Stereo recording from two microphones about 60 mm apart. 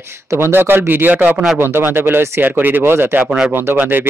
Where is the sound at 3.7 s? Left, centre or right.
Right.